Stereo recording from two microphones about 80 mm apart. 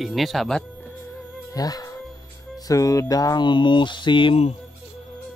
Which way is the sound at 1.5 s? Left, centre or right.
Left.